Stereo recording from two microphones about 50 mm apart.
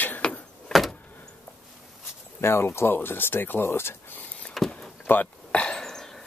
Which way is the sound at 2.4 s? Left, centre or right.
Left.